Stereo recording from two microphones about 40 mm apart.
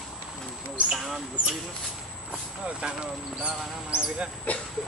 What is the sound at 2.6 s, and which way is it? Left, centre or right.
Speech, right.